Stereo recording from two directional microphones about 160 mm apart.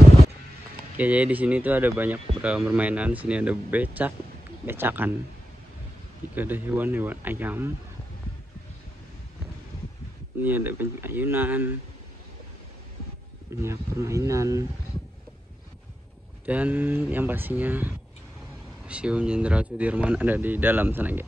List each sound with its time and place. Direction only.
0.9 s speech: 10° right (ahead or behind)
6.3 s speech: 10° right (ahead or behind)
10.4 s speech: 10° right (ahead or behind)
13.6 s speech: 15° right (ahead or behind)
16.4 s speech: 10° right (ahead or behind)